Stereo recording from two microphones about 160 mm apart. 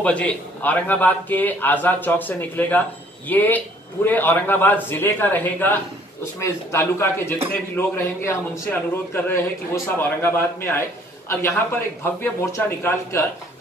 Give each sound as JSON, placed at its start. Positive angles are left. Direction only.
{"t": 0.0, "sound": "a man's voice", "side_deg": 10}
{"t": 12.0, "sound": "a man's voice", "side_deg": 15}